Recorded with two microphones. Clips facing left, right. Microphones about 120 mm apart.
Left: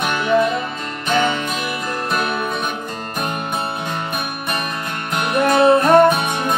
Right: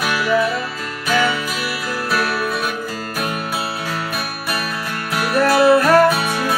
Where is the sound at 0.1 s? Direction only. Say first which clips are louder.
Left 1 dB; 25° left (ahead or behind).